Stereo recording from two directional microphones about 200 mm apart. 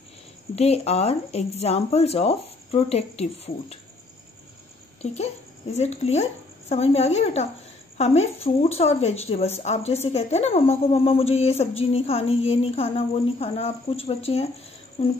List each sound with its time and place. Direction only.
0.6 s speech: 30° left (ahead or behind)
5.0 s speech: 35° left (ahead or behind)
15.0 s a sound: 25° left (ahead or behind)